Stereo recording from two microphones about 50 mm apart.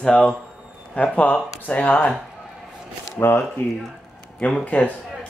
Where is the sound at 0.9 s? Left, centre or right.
Left.